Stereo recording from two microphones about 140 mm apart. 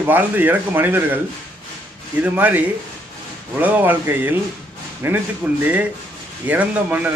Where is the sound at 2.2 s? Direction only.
10° right (ahead or behind).